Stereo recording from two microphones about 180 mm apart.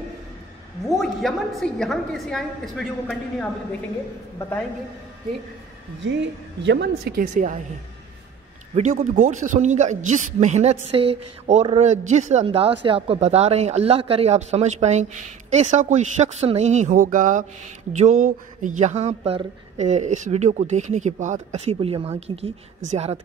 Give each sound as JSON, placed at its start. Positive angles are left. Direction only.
{"t": 0.8, "sound": "a woman's voice", "side_deg": 0}
{"t": 6.6, "sound": "speech", "side_deg": -75}
{"t": 8.7, "sound": "speech", "side_deg": -40}